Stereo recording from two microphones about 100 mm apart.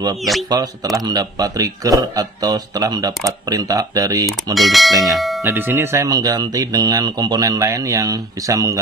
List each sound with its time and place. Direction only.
0.2 s speech: centre (ahead or behind)
0.5 s a man's voice: 40° right (ahead or behind)
4.6 s speech: centre (ahead or behind)
5.4 s speech: 20° right (ahead or behind)
6.0 s a man's voice: 40° right (ahead or behind)